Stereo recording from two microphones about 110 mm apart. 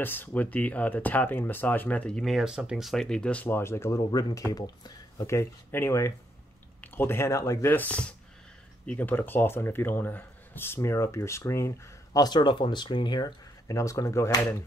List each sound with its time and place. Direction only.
0.0 s speech: 15° left (ahead or behind)
4.1 s speech: 35° left (ahead or behind)
5.2 s speech: 25° left (ahead or behind)